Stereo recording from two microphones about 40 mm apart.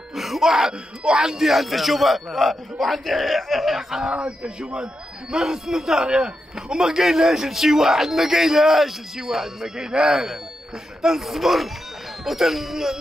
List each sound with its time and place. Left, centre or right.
0.1 s a man's voice: centre
4.2 s a man's voice: right
5.3 s a man's voice: centre
11.0 s a man's voice: centre